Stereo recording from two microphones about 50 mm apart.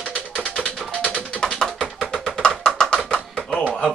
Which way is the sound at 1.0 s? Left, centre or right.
Right.